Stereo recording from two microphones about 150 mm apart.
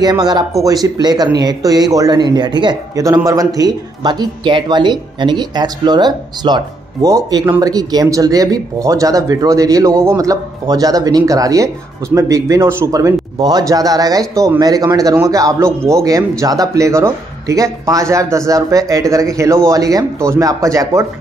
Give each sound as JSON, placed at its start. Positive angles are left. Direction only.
{"t": 0.0, "sound": "speech", "side_deg": -25}